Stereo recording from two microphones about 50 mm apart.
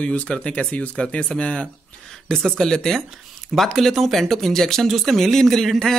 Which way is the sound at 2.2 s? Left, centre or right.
Centre.